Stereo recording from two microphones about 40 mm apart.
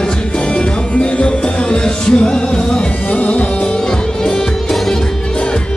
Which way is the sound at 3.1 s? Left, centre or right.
Left.